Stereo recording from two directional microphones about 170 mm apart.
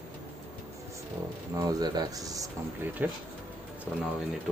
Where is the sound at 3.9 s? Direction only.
5° right (ahead or behind).